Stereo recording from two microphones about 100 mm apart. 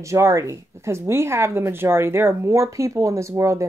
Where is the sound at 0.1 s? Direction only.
30° right (ahead or behind).